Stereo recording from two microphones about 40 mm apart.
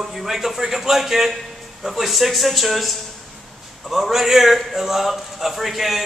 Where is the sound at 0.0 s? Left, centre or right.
Centre.